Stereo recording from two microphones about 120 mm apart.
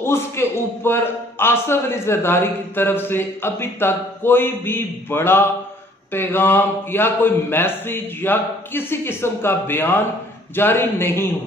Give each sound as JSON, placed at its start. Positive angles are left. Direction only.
{"t": 0.0, "sound": "a man's voice", "side_deg": 20}